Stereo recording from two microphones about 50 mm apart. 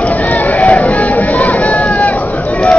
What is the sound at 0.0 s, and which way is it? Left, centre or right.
Run, left.